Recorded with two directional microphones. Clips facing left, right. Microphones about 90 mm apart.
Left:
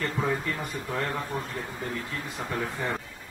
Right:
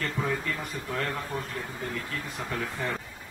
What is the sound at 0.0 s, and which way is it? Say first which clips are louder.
Speech: left 2 dB; 20° left (ahead or behind).